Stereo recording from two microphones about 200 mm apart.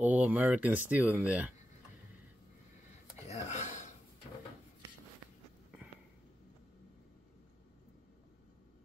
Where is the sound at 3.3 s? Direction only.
35° left (ahead or behind).